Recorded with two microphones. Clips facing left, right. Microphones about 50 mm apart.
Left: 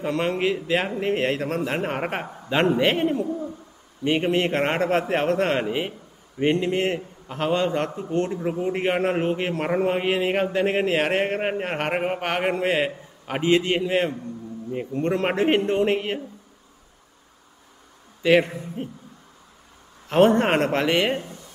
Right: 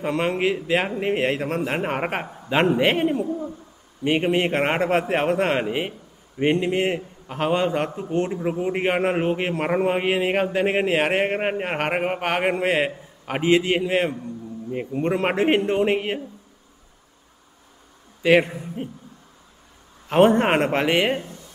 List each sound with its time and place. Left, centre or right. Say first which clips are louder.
0.0 s a man's voice: right 1 dB; centre
18.2 s a man's voice: right 1 dB; centre
20.1 s a man's voice: right 1 dB; centre